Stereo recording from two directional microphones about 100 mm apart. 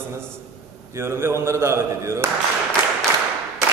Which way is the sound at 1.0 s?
25° right (ahead or behind).